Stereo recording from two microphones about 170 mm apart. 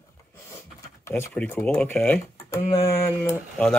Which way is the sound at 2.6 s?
35° left (ahead or behind).